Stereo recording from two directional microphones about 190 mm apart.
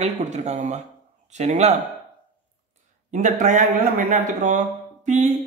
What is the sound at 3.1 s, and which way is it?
Speech, 40° right (ahead or behind).